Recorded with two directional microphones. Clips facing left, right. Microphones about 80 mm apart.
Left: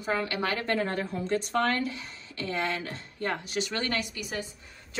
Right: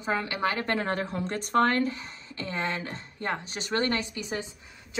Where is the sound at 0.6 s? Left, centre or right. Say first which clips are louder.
Even; right.